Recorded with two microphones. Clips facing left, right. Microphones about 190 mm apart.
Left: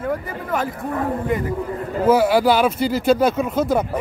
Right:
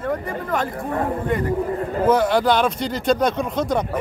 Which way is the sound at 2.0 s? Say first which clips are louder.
Left 2 dB; 5° left (ahead or behind).